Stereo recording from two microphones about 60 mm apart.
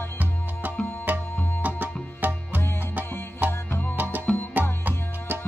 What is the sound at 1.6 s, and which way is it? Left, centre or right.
Music, right.